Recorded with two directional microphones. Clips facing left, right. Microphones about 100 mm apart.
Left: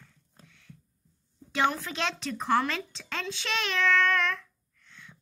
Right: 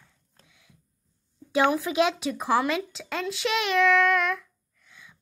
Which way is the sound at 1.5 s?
10° right (ahead or behind).